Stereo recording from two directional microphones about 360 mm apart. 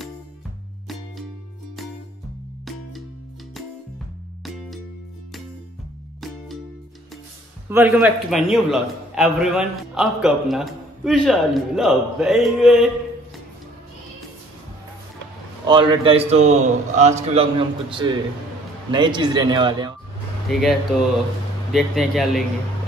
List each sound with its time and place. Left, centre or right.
7.7 s a man's voice: centre
15.6 s a man's voice: centre
20.4 s speech: centre
21.7 s a man's voice: centre